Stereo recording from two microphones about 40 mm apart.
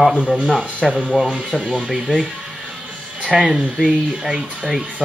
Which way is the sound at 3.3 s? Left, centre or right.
Centre.